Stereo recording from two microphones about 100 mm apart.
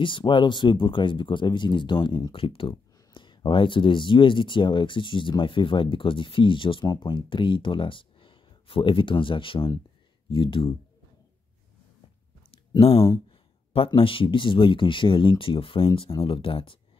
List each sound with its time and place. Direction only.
0.0 s speech: 55° left (ahead or behind)
3.2 s speech: 55° left (ahead or behind)
12.8 s speech: 75° left (ahead or behind)
13.8 s speech: 60° left (ahead or behind)